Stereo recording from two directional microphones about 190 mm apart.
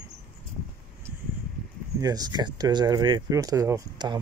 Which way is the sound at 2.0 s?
20° right (ahead or behind).